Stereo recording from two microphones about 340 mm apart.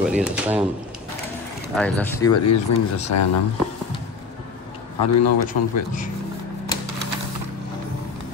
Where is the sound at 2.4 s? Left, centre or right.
Left.